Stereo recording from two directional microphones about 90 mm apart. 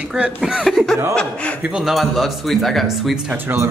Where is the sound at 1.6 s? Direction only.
5° right (ahead or behind).